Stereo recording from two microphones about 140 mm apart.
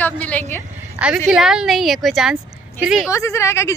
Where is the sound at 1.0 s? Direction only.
5° right (ahead or behind).